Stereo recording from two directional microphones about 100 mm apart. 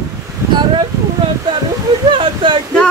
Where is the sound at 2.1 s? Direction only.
60° right (ahead or behind).